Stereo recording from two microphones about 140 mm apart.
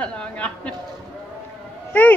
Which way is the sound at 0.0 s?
10° left (ahead or behind).